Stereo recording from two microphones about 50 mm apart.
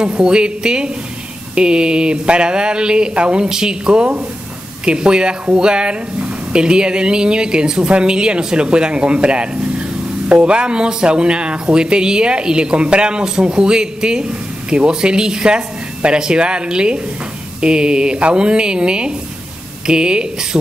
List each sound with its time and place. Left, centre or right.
0.0 s speech: centre